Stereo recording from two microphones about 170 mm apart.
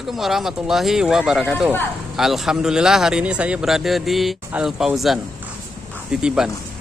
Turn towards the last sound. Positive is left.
turn(degrees=-5)  # may be behind; listen again after turning